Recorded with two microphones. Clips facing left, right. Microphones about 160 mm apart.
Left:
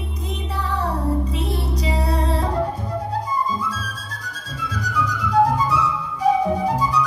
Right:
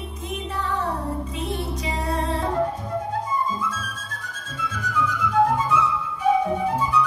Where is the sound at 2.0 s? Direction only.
35° left (ahead or behind).